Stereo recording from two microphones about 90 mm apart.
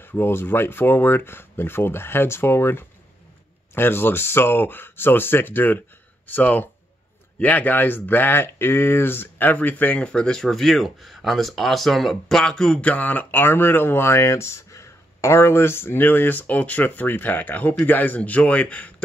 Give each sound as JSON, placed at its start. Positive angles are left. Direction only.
{"t": 0.0, "sound": "speech", "side_deg": 25}